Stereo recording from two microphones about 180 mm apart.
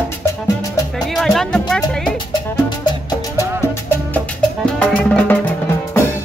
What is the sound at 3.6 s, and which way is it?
Music, 10° left (ahead or behind).